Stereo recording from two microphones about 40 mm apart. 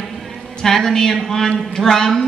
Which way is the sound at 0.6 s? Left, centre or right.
Centre.